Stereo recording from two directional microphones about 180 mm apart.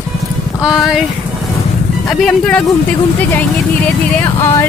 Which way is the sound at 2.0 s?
5° left (ahead or behind).